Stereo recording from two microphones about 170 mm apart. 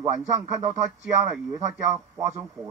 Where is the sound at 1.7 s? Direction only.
20° right (ahead or behind).